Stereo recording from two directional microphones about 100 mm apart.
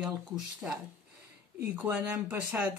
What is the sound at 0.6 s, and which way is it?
Speech, 15° right (ahead or behind).